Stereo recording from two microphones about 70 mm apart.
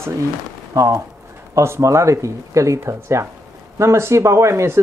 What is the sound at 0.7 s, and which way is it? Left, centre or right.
Speech, right.